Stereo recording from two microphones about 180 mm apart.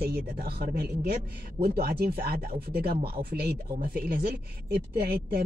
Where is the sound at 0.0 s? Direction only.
60° right (ahead or behind).